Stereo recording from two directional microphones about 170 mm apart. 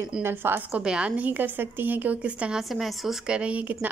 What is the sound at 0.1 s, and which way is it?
A woman's voice, 10° right (ahead or behind).